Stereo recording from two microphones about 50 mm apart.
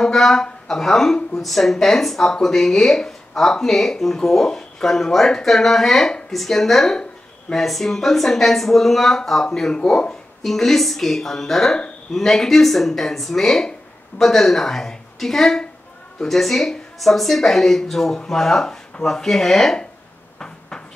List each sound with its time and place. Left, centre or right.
0.0 s a woman's voice: centre
10.4 s a woman's voice: centre
20.3 s cupboard open or close: centre